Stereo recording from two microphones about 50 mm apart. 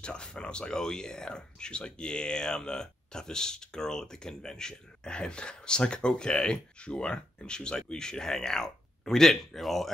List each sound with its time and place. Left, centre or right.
0.0 s speech: centre